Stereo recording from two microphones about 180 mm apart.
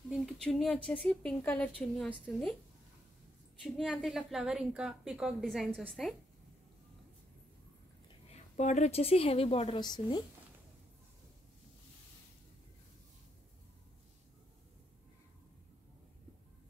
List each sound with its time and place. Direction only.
0.1 s a woman's voice: centre (ahead or behind)
3.6 s a woman's voice: centre (ahead or behind)
8.3 s a woman's voice: 40° left (ahead or behind)